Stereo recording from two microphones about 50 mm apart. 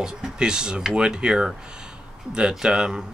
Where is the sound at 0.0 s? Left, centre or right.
Centre.